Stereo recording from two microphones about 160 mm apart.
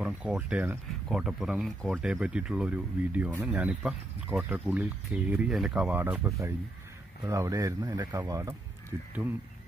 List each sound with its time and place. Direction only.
0.0 s speech: 5° right (ahead or behind)